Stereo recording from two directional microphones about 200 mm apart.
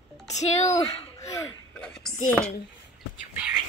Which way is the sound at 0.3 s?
35° left (ahead or behind).